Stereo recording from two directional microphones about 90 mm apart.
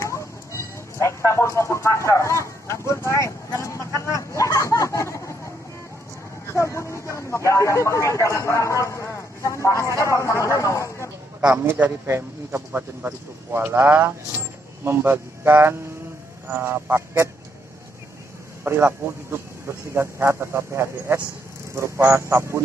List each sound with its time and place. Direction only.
0.0 s a sound: 35° left (ahead or behind)
6.5 s speech: 30° left (ahead or behind)
11.6 s speech: 25° right (ahead or behind)
18.6 s speech: 25° right (ahead or behind)